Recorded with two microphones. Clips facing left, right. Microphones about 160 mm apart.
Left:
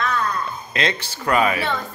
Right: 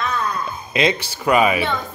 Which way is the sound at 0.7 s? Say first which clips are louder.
Right 7 dB; 10° right (ahead or behind).